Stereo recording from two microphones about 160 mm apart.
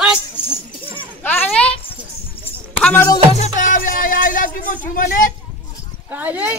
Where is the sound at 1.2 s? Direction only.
10° left (ahead or behind).